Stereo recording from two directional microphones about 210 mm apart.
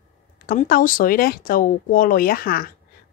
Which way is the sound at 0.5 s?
40° left (ahead or behind).